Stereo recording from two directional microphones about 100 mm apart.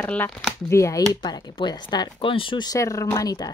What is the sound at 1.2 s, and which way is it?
Speech, 45° left (ahead or behind).